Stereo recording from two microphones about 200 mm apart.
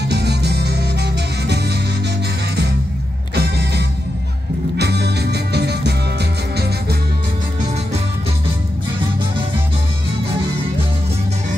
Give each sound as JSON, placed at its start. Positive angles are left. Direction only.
{"t": 0.1, "sound": "music", "side_deg": -55}
{"t": 3.3, "sound": "music", "side_deg": -55}